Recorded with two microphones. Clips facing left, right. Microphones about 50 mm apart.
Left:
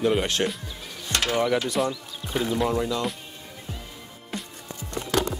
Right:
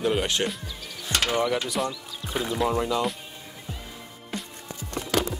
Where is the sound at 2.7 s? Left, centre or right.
Centre.